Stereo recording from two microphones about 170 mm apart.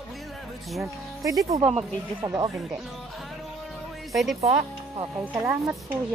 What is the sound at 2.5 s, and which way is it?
Speech, centre (ahead or behind).